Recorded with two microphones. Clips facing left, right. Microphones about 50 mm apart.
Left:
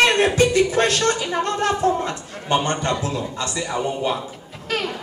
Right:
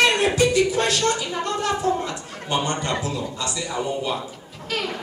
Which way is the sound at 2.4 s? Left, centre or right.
Left.